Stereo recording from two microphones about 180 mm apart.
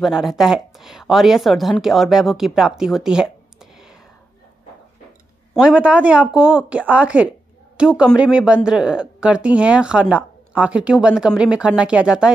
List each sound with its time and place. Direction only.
0.0 s a woman's voice: centre (ahead or behind)
5.5 s a woman's voice: 5° right (ahead or behind)